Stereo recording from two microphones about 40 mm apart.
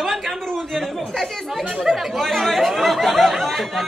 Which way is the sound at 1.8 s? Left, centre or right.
Centre.